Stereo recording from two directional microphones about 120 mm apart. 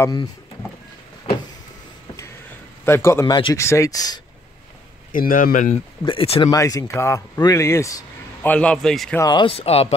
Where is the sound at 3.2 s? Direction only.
40° left (ahead or behind).